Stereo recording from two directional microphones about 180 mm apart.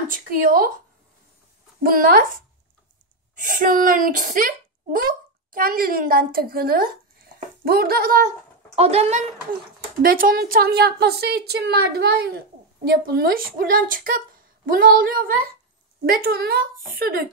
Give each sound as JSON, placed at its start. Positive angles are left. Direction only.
{"t": 0.1, "sound": "a woman's voice", "side_deg": -50}
{"t": 1.8, "sound": "a woman's voice", "side_deg": -50}
{"t": 3.3, "sound": "a woman's voice", "side_deg": -45}
{"t": 8.7, "sound": "a woman's voice", "side_deg": -35}
{"t": 10.0, "sound": "a woman's voice", "side_deg": -50}